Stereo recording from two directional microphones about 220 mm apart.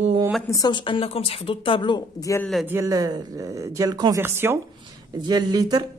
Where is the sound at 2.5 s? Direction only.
10° right (ahead or behind).